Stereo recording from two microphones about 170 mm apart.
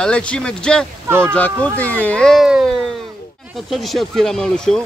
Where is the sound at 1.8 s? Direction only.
10° left (ahead or behind).